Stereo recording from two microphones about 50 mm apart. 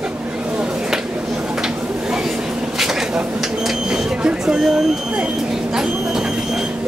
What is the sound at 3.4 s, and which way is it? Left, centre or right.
Speech, centre.